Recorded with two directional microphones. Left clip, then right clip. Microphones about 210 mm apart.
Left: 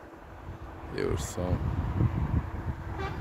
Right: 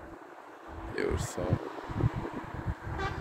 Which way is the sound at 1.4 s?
25° left (ahead or behind).